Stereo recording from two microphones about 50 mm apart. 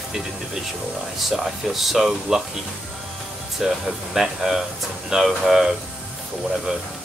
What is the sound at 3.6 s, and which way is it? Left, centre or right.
Speech, centre.